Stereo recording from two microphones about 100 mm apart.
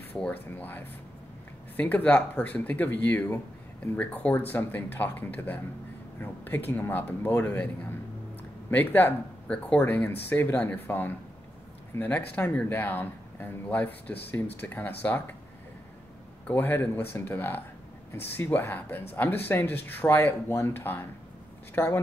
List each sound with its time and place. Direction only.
0.1 s speech: 15° left (ahead or behind)
16.4 s speech: 20° left (ahead or behind)